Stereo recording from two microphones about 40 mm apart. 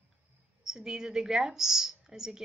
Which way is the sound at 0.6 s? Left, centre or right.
Centre.